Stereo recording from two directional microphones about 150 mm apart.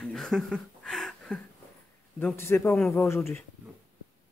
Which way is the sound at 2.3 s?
15° left (ahead or behind).